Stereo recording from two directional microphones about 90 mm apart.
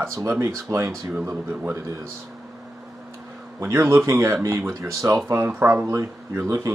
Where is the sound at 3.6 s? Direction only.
30° right (ahead or behind).